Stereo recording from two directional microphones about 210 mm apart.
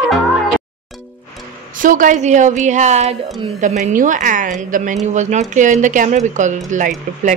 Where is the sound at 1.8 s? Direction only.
40° right (ahead or behind).